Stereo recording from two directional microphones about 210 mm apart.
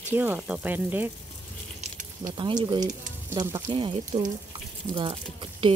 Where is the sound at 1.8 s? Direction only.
40° right (ahead or behind).